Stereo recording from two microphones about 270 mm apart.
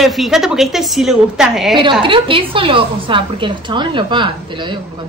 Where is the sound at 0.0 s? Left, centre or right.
Centre.